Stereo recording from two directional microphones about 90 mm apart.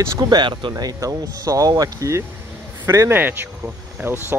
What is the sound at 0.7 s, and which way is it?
Speech, 40° right (ahead or behind).